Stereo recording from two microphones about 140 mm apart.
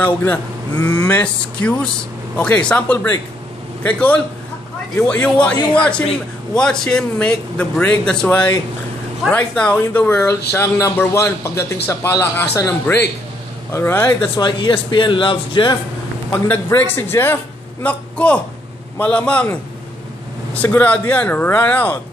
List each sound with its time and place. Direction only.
0.0 s a man's voice: 15° left (ahead or behind)
13.7 s a man's voice: 20° left (ahead or behind)
14.2 s speech: 35° left (ahead or behind)
16.4 s a man's voice: 15° left (ahead or behind)
20.5 s a man's voice: 10° left (ahead or behind)